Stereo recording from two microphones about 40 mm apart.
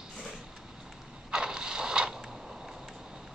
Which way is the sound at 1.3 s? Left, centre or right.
Centre.